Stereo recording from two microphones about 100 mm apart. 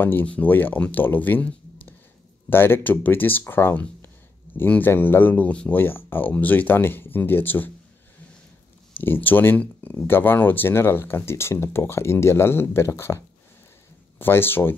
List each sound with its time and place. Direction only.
0.0 s speech: 20° left (ahead or behind)
8.9 s speech: 20° left (ahead or behind)